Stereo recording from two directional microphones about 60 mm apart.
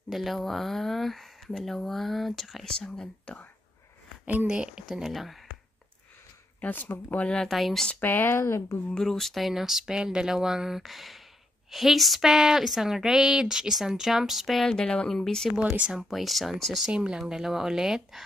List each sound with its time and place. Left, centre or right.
0.1 s a woman's voice: centre
4.5 s speech: centre
4.8 s a woman's voice: centre
6.6 s speech: left
7.3 s a woman's voice: centre
8.0 s speech: left
8.9 s a woman's voice: centre
14.7 s speech: centre
15.5 s speech: right
16.0 s a woman's voice: centre
16.8 s speech: centre